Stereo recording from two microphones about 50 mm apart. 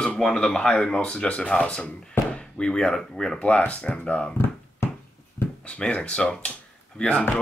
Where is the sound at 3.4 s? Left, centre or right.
Left.